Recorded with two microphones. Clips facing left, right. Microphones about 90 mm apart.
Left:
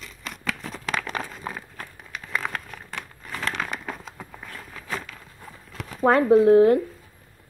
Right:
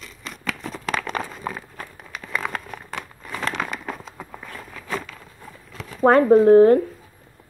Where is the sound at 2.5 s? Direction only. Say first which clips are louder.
Right 3 dB; 15° right (ahead or behind).